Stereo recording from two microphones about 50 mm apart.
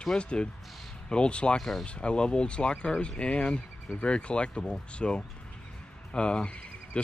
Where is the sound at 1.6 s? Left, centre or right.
Centre.